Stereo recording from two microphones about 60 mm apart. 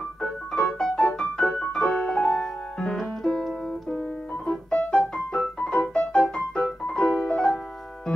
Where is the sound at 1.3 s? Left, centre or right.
Centre.